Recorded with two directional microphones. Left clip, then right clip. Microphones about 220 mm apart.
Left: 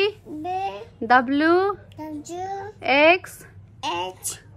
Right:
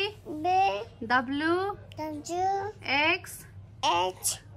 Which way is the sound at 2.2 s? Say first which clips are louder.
Right 4 dB; 30° right (ahead or behind).